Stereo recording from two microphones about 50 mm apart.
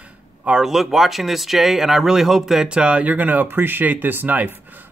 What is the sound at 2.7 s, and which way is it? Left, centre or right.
Speech, right.